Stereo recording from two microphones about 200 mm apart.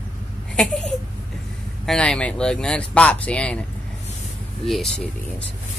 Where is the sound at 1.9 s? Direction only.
5° left (ahead or behind).